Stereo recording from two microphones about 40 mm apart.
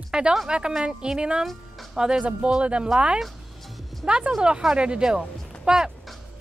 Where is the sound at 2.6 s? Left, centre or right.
Right.